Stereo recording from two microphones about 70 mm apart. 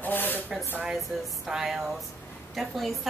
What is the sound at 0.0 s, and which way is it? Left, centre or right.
Spray, left.